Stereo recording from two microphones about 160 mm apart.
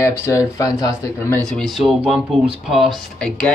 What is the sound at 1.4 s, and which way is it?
Speech, centre (ahead or behind).